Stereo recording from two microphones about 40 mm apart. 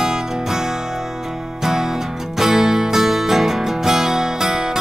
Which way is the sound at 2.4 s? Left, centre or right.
Centre.